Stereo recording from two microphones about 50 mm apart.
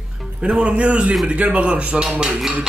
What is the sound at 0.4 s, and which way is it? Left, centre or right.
Speech, right.